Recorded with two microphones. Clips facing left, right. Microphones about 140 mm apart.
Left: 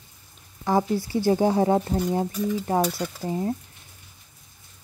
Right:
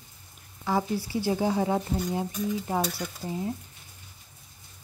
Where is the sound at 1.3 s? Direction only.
45° left (ahead or behind).